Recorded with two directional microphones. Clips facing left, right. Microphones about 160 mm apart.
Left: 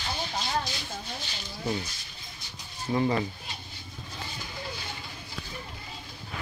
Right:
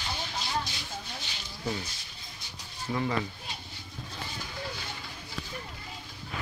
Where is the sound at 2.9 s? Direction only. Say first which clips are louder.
Left 5 dB; 25° left (ahead or behind).